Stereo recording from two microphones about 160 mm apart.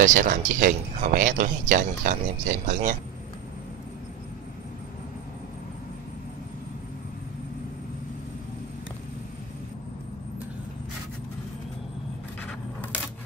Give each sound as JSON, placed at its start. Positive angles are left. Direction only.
{"t": 0.0, "sound": "speech", "side_deg": -55}